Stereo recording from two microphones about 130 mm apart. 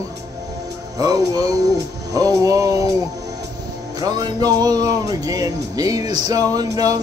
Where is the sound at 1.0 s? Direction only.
30° right (ahead or behind).